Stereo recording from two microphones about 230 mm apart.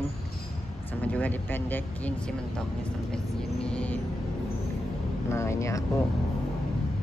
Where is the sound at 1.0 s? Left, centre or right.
Centre.